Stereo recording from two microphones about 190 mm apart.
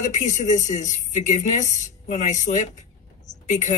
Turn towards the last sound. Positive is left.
turn(degrees=40)  # may be behind; listen again after turning